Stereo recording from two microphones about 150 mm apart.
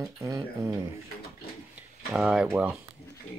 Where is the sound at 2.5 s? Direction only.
15° right (ahead or behind).